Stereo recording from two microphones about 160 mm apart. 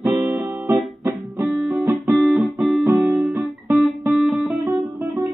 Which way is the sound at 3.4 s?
Centre (ahead or behind).